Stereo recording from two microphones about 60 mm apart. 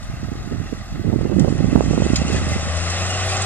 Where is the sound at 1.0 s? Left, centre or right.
Left.